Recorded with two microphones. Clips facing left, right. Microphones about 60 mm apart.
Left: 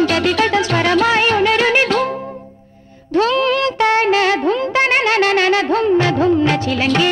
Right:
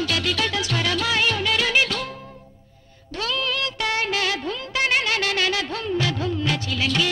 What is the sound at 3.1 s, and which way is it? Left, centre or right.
Music, left.